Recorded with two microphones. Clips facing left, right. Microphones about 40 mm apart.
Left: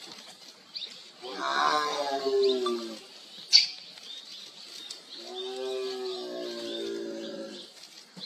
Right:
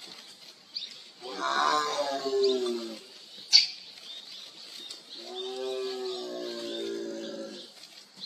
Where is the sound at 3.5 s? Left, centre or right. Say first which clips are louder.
Even; centre.